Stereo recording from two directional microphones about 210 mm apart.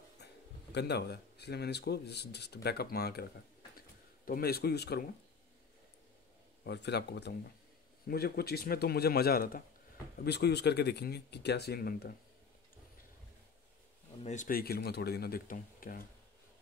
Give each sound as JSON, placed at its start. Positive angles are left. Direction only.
{"t": 0.2, "sound": "a sound", "side_deg": 50}
{"t": 0.7, "sound": "speech", "side_deg": 55}
{"t": 4.3, "sound": "speech", "side_deg": 45}
{"t": 6.6, "sound": "speech", "side_deg": 55}
{"t": 14.2, "sound": "speech", "side_deg": 35}